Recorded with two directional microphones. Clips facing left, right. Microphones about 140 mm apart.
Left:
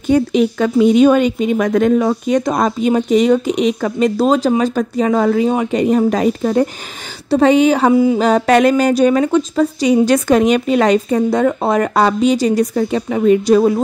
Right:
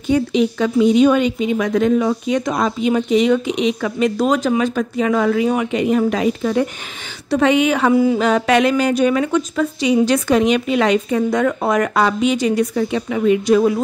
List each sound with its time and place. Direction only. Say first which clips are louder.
0.1 s speech: left 3 dB; 50° left (ahead or behind)
7.9 s a sound: left 2 dB; 20° left (ahead or behind)
8.2 s speech: left 3 dB; 35° left (ahead or behind)